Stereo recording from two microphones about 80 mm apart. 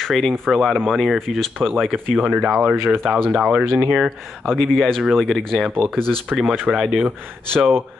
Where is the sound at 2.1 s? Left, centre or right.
Centre.